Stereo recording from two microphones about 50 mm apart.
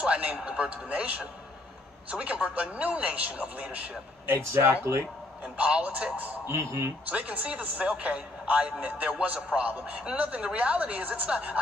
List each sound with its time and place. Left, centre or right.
0.0 s a man's voice: right
5.6 s a man's voice: right
6.4 s speech: right
7.1 s a man's voice: right